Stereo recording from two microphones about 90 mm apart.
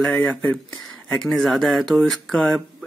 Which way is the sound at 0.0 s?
10° left (ahead or behind).